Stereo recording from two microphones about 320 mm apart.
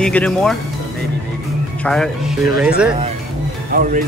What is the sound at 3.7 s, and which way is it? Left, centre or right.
Speech, right.